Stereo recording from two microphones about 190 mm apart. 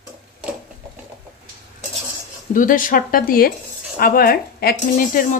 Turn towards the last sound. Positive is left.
turn(degrees=50)  # may be behind; listen again after turning